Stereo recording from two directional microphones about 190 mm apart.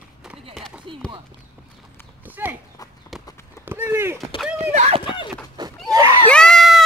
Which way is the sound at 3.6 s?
10° right (ahead or behind).